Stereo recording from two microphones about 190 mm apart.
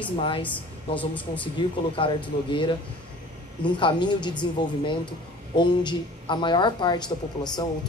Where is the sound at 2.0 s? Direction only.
25° left (ahead or behind).